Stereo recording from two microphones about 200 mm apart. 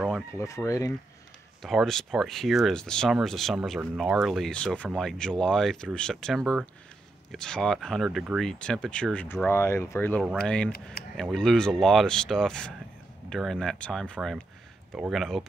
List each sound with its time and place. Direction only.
0.3 s speech: 15° left (ahead or behind)
1.6 s speech: centre (ahead or behind)